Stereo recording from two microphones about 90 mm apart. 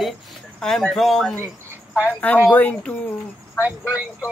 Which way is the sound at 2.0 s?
20° left (ahead or behind).